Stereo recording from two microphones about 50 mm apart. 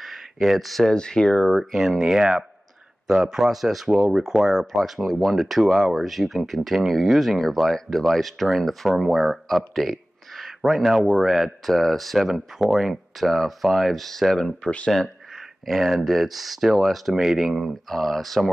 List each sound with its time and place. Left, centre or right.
0.0 s a sound: centre
0.9 s speech: centre
1.5 s speech: centre
14.6 s speech: left
15.6 s speech: centre
17.6 s speech: centre